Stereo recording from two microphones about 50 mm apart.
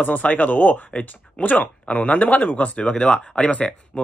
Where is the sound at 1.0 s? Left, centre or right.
Left.